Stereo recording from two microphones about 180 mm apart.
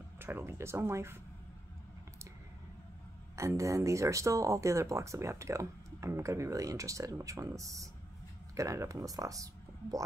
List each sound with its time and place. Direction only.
0.2 s speech: 15° right (ahead or behind)
3.3 s speech: 15° right (ahead or behind)